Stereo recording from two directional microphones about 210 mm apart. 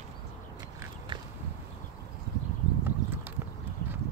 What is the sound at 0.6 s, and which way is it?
Duck, 15° right (ahead or behind).